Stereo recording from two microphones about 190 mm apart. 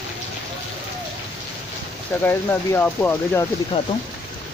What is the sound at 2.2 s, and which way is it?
Speech, 10° left (ahead or behind).